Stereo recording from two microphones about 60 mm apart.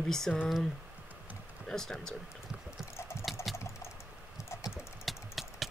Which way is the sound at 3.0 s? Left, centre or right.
Left.